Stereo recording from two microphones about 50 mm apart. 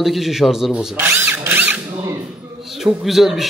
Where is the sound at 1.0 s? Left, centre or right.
Right.